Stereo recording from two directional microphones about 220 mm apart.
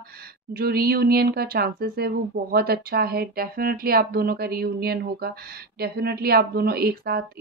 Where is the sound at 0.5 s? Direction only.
45° right (ahead or behind).